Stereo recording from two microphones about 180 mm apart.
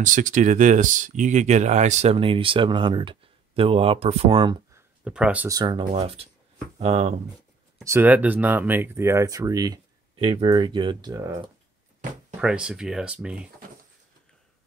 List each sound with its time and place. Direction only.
0.0 s speech: 45° right (ahead or behind); by 4.6 s 25° right (ahead or behind)
4.7 s a sound: 5° right (ahead or behind)
5.5 s speech: 25° right (ahead or behind)
7.8 s speech: 15° right (ahead or behind)
10.2 s speech: 35° right (ahead or behind); by 11.4 s 15° right (ahead or behind)
12.4 s speech: 5° right (ahead or behind)